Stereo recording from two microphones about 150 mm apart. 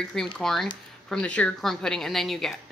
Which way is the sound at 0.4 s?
Centre (ahead or behind).